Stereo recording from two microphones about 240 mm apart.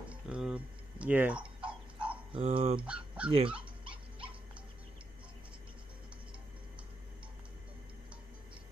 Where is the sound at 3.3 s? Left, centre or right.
Right.